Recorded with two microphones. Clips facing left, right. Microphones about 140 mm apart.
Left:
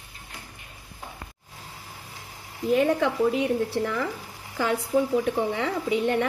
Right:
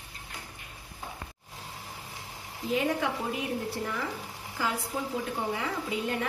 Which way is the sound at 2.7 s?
65° left (ahead or behind).